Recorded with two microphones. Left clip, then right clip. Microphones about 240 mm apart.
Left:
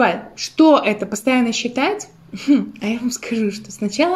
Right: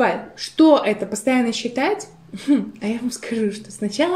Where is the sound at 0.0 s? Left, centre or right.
Left.